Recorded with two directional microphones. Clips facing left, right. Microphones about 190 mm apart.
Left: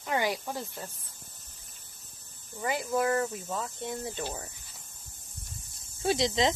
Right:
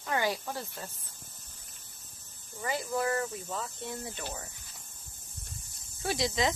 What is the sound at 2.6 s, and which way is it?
Speech, 15° left (ahead or behind).